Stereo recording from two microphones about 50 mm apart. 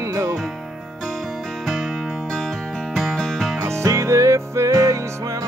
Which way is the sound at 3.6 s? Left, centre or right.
Right.